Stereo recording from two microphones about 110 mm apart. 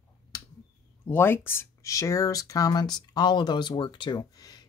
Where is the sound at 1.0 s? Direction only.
20° left (ahead or behind); by 4.6 s 40° left (ahead or behind).